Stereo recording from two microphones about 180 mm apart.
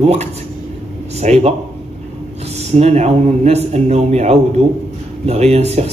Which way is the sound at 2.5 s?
35° right (ahead or behind).